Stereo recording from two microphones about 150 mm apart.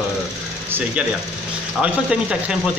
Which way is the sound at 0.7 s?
15° right (ahead or behind).